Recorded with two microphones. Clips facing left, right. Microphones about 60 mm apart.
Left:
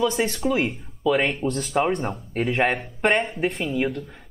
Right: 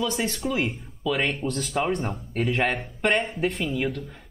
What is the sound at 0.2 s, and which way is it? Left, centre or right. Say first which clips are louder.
Speech: left 4 dB; left.